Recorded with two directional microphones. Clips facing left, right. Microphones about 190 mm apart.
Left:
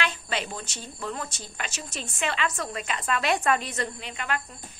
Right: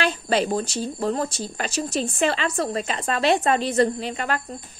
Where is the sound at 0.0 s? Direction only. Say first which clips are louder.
Right 9 dB; 35° right (ahead or behind).